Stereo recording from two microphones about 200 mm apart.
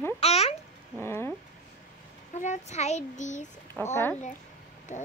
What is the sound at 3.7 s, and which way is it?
Speech, 10° left (ahead or behind).